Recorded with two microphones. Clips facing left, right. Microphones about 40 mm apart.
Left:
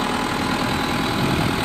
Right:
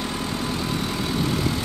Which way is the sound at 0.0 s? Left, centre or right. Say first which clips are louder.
Left 6 dB; left.